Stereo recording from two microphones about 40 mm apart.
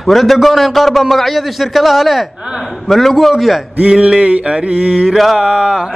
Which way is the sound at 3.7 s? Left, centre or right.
Right.